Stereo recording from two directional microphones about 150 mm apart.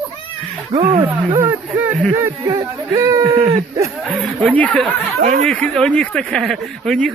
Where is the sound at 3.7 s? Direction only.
20° right (ahead or behind).